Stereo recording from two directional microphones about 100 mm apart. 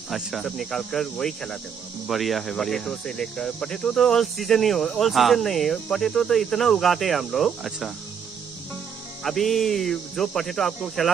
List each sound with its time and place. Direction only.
0.1 s cricket: centre (ahead or behind)
9.2 s cricket: centre (ahead or behind)